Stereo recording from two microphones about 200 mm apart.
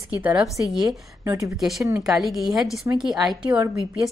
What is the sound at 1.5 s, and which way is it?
A woman's voice, centre (ahead or behind).